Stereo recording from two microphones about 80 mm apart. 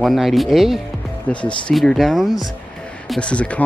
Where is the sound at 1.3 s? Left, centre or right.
Centre.